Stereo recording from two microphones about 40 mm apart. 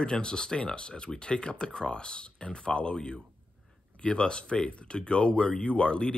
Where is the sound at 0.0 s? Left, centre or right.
Left.